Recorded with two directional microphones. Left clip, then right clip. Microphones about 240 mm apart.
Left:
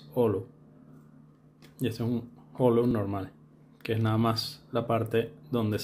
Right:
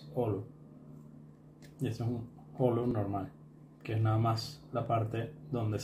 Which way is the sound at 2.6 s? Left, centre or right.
Left.